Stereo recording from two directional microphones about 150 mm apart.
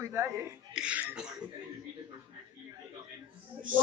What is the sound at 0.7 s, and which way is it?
Throat clearing, 5° right (ahead or behind).